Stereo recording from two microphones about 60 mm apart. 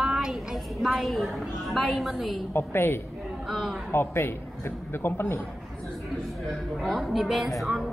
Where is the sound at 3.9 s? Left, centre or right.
Left.